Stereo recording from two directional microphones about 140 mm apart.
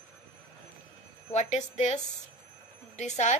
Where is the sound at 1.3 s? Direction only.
55° left (ahead or behind).